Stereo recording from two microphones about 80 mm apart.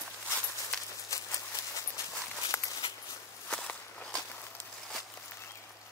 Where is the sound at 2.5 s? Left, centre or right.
Left.